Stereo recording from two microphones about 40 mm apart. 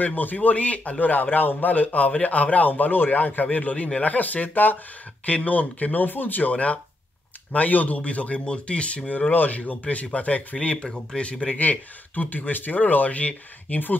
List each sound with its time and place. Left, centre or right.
0.0 s a man's voice: left
5.2 s speech: left
6.0 s a man's voice: left
9.3 s a man's voice: left
9.6 s speech: left
12.2 s a man's voice: left